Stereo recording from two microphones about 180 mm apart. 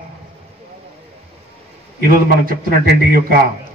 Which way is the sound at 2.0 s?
50° right (ahead or behind).